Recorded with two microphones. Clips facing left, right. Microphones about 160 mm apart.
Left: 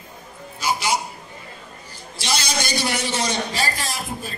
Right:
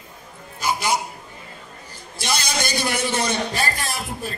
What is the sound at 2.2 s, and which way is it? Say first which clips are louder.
A man's voice: even; 50° right (ahead or behind).